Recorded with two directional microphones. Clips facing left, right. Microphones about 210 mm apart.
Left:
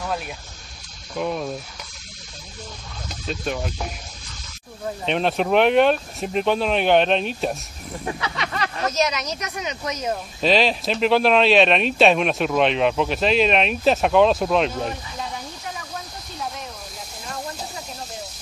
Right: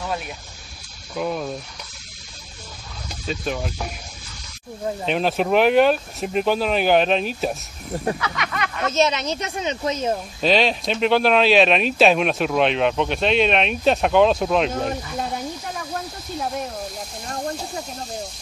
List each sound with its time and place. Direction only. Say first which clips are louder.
1.1 s speech: even; centre (ahead or behind)
3.1 s speech: right 1 dB; centre (ahead or behind)
5.0 s speech: even; centre (ahead or behind)
8.2 s speech: even; 30° left (ahead or behind)
8.8 s speech: right 4 dB; 25° right (ahead or behind)
10.4 s speech: even; centre (ahead or behind)